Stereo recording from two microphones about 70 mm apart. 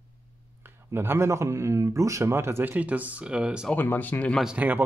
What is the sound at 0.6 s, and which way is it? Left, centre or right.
Speech, right.